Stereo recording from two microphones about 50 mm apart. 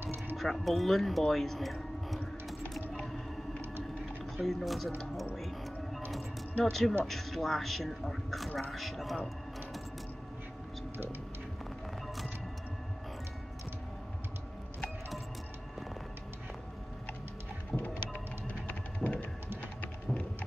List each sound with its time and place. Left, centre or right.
0.0 s music: right
0.4 s speech: centre
4.4 s a man's voice: centre
6.6 s a man's voice: centre
17.9 s music: left
19.0 s a sound: centre